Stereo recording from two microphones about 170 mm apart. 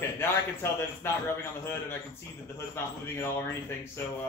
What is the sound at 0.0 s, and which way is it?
A man's voice, 15° left (ahead or behind).